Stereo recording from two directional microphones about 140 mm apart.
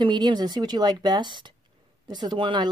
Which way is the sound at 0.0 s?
30° right (ahead or behind).